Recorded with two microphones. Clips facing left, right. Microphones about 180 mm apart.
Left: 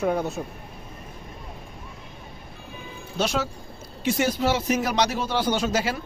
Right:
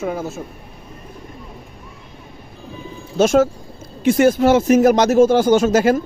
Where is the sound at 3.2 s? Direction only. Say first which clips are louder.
Right 12 dB; 45° right (ahead or behind).